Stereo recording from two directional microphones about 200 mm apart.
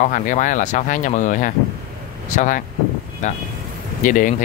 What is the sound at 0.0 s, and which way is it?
Speech, 40° left (ahead or behind).